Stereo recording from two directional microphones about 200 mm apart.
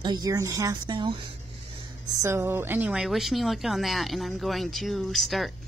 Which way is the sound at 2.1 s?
15° right (ahead or behind).